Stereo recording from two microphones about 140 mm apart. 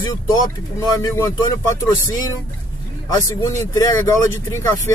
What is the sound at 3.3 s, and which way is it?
Speech, 20° left (ahead or behind).